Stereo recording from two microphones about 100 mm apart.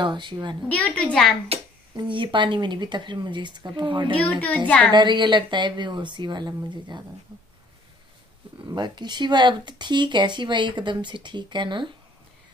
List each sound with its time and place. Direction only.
0.0 s speech: 50° right (ahead or behind)
0.7 s a woman's voice: 15° left (ahead or behind)
1.5 s a sound: 90° right
2.0 s speech: 55° right (ahead or behind)
8.6 s speech: 50° right (ahead or behind)